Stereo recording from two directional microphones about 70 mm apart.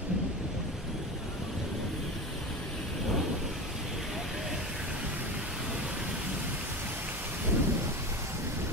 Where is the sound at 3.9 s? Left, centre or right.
Centre.